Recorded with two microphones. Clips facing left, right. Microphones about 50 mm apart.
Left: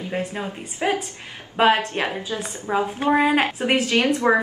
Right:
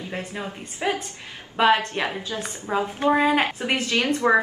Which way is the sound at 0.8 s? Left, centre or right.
Centre.